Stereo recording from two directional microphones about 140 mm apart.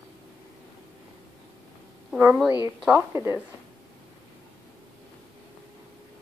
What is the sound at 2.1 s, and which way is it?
Speech, 10° right (ahead or behind).